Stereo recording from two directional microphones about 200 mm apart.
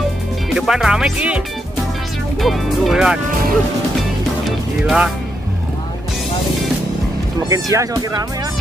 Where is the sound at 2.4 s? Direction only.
Centre (ahead or behind).